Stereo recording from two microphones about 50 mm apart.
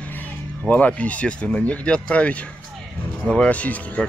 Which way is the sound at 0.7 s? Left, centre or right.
Left.